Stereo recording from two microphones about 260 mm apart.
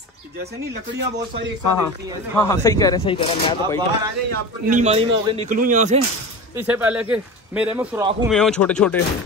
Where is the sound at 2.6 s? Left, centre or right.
Centre.